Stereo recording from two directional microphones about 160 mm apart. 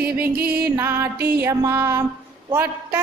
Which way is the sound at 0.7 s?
15° right (ahead or behind).